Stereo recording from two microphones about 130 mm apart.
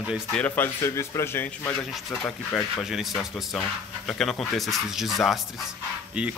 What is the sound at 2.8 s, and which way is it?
Speech, centre (ahead or behind).